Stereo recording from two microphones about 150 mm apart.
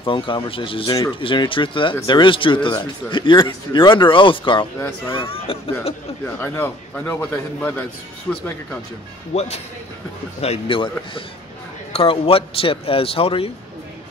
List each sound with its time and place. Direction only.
0.0 s speech: 35° left (ahead or behind)
4.7 s a man's voice: 15° left (ahead or behind)
5.1 s speech: 35° left (ahead or behind)
6.4 s a man's voice: 15° left (ahead or behind)
9.3 s speech: 45° left (ahead or behind)